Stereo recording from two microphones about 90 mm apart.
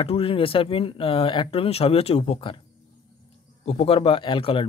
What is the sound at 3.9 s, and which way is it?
Speech, 90° left.